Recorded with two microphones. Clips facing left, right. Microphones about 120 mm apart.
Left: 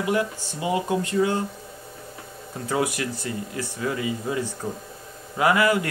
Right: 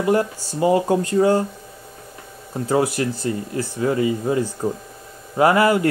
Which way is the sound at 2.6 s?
30° right (ahead or behind).